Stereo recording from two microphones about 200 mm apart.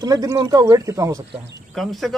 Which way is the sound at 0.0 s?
20° right (ahead or behind).